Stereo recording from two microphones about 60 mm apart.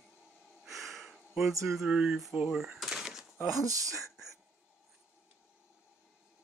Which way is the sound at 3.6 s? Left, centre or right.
Right.